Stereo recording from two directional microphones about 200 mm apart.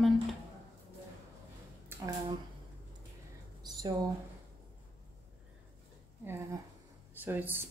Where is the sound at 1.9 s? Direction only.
10° right (ahead or behind).